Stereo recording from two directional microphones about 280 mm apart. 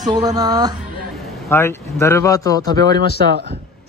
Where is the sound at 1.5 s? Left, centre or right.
Centre.